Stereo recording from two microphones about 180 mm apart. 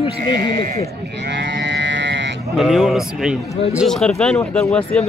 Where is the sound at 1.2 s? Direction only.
75° right (ahead or behind).